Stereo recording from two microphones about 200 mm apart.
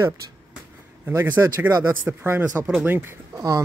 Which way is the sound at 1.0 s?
10° right (ahead or behind).